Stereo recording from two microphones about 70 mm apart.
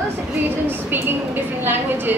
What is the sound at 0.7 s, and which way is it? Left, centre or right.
A woman's voice, right.